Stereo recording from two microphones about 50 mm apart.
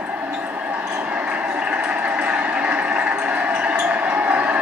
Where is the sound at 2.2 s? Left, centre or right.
Right.